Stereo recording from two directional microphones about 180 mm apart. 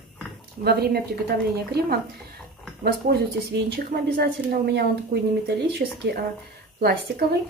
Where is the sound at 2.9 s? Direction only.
60° right (ahead or behind).